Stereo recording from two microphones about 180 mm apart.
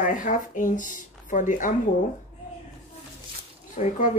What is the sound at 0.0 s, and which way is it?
Speech, 45° left (ahead or behind).